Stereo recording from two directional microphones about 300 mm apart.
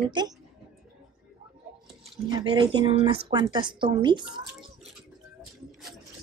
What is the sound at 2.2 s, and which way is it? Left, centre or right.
A woman's voice, centre.